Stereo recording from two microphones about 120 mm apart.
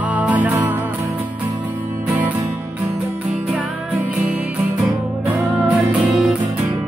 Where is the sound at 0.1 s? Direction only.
15° right (ahead or behind).